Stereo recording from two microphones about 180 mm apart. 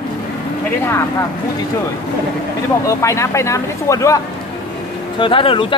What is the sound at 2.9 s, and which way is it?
Speech, 15° left (ahead or behind).